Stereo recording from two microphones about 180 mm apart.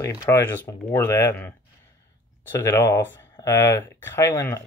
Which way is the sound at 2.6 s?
15° left (ahead or behind).